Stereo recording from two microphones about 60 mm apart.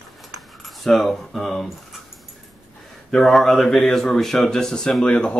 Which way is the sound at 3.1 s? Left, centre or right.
Centre.